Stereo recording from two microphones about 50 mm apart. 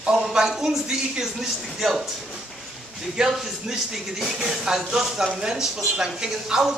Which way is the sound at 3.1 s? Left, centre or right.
Centre.